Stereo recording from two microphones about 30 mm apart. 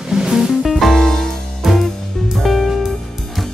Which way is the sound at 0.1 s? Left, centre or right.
Centre.